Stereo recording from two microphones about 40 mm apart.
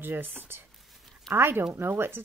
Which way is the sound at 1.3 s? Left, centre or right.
Right.